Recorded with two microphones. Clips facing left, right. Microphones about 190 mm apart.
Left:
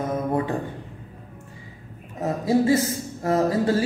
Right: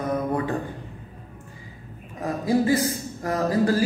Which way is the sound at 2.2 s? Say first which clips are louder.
Left 2 dB; 25° left (ahead or behind).